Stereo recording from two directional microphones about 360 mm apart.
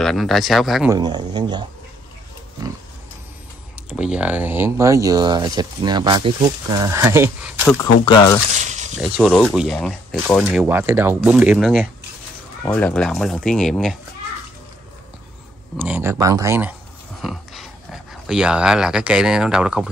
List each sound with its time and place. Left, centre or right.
0.0 s speech: centre
0.9 s speech: centre
3.9 s speech: centre
8.0 s speech: centre
8.5 s speech: centre
9.2 s speech: centre
15.8 s speech: centre
17.2 s a sound: centre
18.2 s speech: centre